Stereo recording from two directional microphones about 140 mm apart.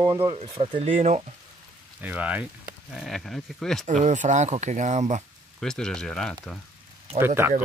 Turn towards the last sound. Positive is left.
turn(degrees=-15)  # may be behind; listen again after turning